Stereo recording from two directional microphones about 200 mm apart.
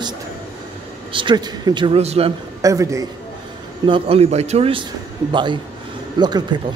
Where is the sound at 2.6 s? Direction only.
15° right (ahead or behind).